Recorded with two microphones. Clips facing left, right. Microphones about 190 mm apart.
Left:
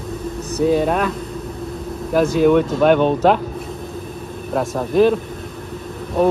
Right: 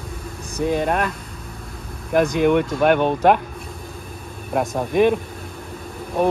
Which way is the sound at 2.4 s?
10° right (ahead or behind).